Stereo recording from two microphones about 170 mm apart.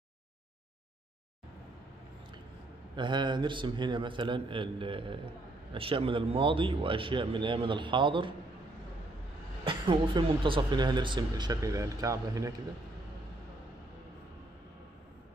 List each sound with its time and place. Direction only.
3.0 s a man's voice: 25° right (ahead or behind)
9.7 s a man's voice: 30° right (ahead or behind)